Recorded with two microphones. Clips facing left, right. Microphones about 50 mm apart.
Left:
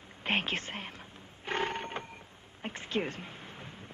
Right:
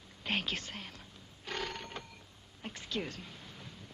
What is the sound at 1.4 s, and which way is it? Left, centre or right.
Printer, left.